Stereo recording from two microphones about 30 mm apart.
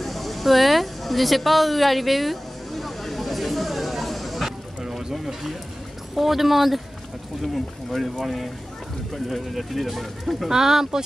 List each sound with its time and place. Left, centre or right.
0.0 s a sound: centre
6.1 s speech: centre
9.1 s speech: centre
10.5 s speech: centre